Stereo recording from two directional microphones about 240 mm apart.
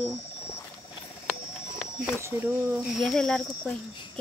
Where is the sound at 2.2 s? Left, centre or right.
Centre.